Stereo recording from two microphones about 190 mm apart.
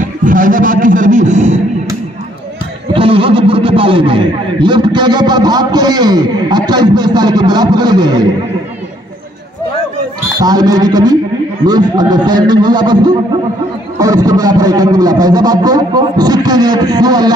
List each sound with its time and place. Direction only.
0.0 s a man's voice: 45° right (ahead or behind)
2.9 s a man's voice: 30° right (ahead or behind)
10.4 s a man's voice: 20° right (ahead or behind)